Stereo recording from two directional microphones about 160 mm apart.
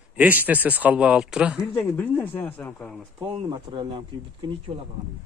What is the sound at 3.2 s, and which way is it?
Speech, 30° right (ahead or behind).